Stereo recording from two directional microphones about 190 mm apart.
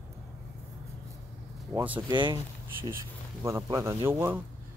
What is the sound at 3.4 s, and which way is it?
Speech, 15° right (ahead or behind).